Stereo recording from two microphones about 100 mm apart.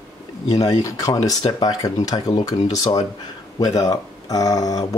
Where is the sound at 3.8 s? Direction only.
40° left (ahead or behind).